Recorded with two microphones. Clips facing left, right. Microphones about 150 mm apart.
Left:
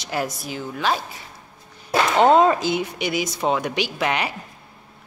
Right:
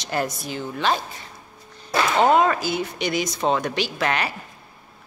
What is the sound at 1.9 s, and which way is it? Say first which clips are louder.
Speech: left 2 dB; 25° left (ahead or behind).